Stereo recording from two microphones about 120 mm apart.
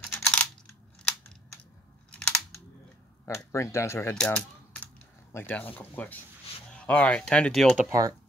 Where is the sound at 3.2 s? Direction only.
25° left (ahead or behind).